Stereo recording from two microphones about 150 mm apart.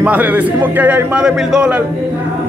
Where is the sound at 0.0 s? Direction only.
10° right (ahead or behind).